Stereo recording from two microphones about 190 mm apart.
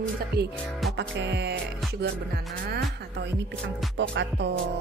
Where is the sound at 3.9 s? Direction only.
65° right (ahead or behind).